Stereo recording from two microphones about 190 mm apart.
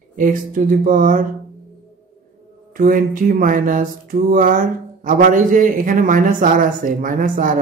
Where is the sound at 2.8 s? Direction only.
45° right (ahead or behind).